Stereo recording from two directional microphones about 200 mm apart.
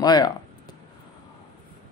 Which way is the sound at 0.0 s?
20° left (ahead or behind).